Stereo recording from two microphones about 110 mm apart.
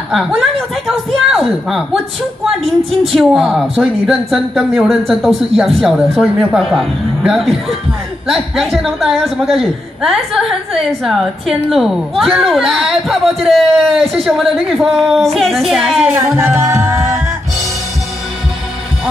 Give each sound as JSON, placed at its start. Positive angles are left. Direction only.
{"t": 0.1, "sound": "a woman's voice", "side_deg": -5}
{"t": 16.3, "sound": "music", "side_deg": -20}